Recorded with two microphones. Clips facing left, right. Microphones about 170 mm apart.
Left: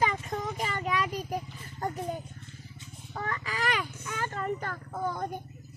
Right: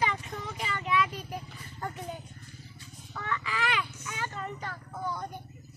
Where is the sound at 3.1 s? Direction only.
40° left (ahead or behind).